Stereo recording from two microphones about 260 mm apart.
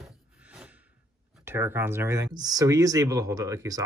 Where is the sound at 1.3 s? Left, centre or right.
Centre.